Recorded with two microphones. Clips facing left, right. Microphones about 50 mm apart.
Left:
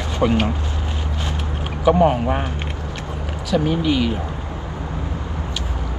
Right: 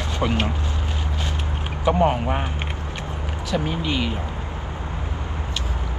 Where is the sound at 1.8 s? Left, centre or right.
Centre.